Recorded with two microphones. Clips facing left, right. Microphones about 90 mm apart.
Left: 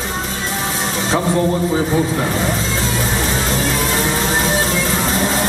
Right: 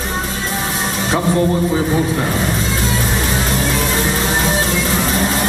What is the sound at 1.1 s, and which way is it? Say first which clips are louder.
A man's voice: right 1 dB; 30° left (ahead or behind).